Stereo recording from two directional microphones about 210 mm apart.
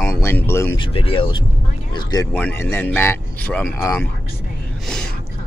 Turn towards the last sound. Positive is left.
turn(degrees=5)  # may be behind; listen again after turning